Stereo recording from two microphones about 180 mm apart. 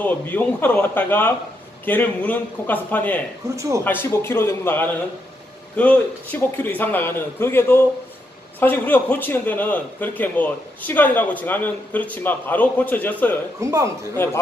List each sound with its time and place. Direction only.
0.0 s a man's voice: 10° left (ahead or behind)
3.4 s speech: 15° right (ahead or behind)
3.8 s a man's voice: 10° left (ahead or behind)
13.6 s speech: 15° right (ahead or behind)
14.1 s a man's voice: 15° left (ahead or behind)